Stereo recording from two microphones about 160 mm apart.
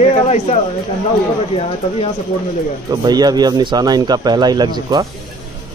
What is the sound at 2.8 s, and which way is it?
Speech, 25° right (ahead or behind).